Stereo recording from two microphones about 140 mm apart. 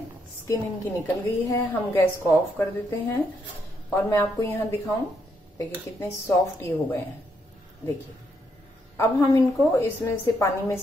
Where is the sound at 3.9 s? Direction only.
15° left (ahead or behind).